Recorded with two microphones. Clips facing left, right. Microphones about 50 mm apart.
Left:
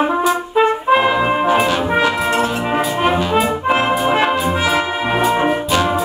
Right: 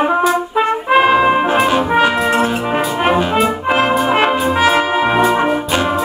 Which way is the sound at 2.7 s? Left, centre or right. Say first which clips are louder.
Right 2 dB; centre.